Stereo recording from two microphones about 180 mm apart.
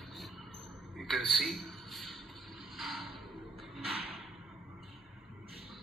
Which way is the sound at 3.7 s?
30° right (ahead or behind).